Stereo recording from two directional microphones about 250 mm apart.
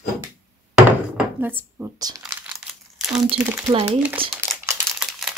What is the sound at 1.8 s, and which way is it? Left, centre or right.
Speech, centre.